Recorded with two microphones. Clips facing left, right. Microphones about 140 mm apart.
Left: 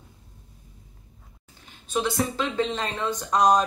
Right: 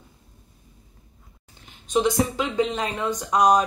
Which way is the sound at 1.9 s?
15° right (ahead or behind).